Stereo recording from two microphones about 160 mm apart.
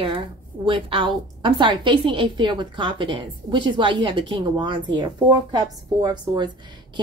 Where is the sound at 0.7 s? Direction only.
30° right (ahead or behind).